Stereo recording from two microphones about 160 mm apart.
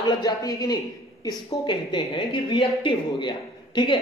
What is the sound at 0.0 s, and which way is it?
A woman's voice, 25° left (ahead or behind).